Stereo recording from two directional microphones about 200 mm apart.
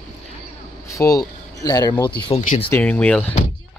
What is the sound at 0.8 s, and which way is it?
Speech, 15° left (ahead or behind).